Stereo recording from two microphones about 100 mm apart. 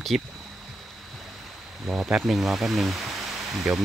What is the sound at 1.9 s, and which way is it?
Speech, 5° right (ahead or behind).